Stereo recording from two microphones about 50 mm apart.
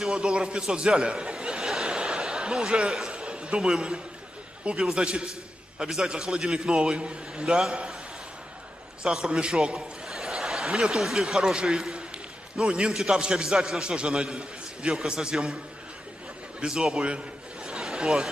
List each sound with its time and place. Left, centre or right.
0.1 s a man's voice: centre
1.7 s a sound: centre
4.7 s a man's voice: centre
9.0 s a man's voice: centre
10.0 s a sound: centre
11.0 s a man's voice: centre
16.6 s a man's voice: centre